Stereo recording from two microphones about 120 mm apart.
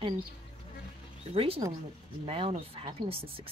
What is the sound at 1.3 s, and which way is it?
Speech, 50° right (ahead or behind).